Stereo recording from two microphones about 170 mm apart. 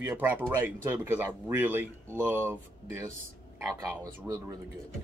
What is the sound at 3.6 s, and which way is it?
Speech, 15° right (ahead or behind).